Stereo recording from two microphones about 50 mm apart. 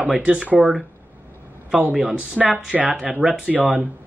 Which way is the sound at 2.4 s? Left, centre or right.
Centre.